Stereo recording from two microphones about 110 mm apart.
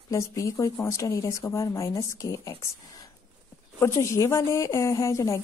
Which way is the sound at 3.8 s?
25° left (ahead or behind).